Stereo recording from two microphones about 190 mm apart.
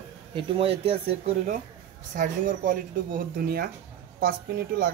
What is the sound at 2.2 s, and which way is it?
Speech, 45° right (ahead or behind).